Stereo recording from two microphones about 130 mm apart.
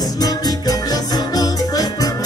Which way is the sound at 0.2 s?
30° left (ahead or behind).